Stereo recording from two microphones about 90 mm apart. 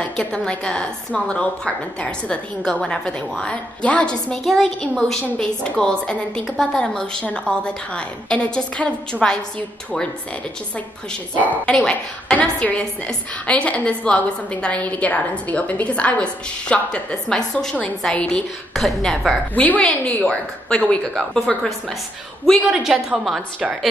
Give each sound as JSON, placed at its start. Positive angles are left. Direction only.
{"t": 0.0, "sound": "a woman's voice", "side_deg": 10}
{"t": 11.5, "sound": "a woman's voice", "side_deg": 15}
{"t": 19.5, "sound": "a woman's voice", "side_deg": 15}
{"t": 22.6, "sound": "a woman's voice", "side_deg": -5}